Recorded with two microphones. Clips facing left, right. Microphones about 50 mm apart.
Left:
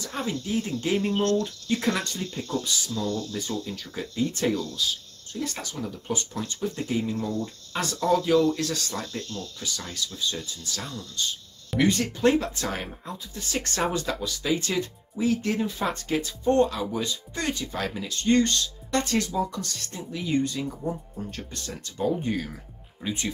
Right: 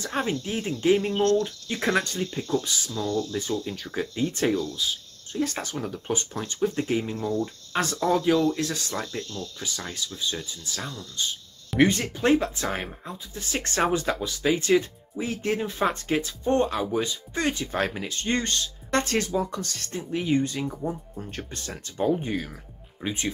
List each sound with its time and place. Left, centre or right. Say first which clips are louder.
0.0 s speech: right 3 dB; right
0.9 s speech: right 1 dB; centre
1.3 s speech: right 1 dB; right
7.2 s speech: right 2 dB; centre
7.7 s speech: right 3 dB; right
8.0 s speech: left 1 dB; centre; by 20.2 s right
20.2 s speech: even; right
22.1 s speech: right 1 dB; centre
23.0 s speech: right 1 dB; right